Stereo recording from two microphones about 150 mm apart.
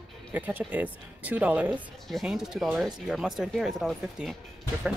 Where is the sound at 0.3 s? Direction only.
10° right (ahead or behind).